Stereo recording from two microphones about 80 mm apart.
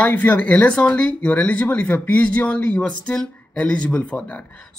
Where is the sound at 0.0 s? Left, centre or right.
Left.